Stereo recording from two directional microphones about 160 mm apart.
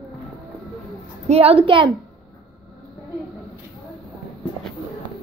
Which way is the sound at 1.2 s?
40° right (ahead or behind).